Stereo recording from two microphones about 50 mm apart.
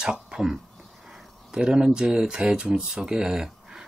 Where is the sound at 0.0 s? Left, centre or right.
Centre.